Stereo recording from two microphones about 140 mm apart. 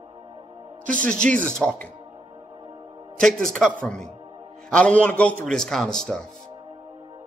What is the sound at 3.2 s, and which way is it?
A man's voice, 5° left (ahead or behind).